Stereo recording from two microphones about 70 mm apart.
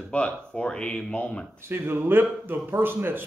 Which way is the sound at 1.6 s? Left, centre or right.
Right.